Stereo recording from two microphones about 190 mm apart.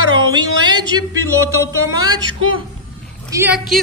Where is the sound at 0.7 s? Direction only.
20° right (ahead or behind).